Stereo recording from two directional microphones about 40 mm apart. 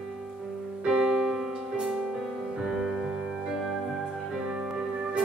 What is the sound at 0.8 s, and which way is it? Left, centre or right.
Music, centre.